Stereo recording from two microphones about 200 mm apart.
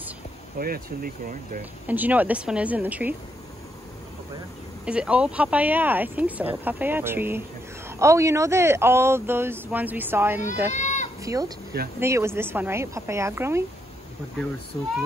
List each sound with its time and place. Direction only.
0.6 s speech: 45° right (ahead or behind)
1.9 s speech: 10° right (ahead or behind)
4.8 s speech: 5° right (ahead or behind)
10.7 s sheep: 35° left (ahead or behind)
11.2 s speech: 15° right (ahead or behind)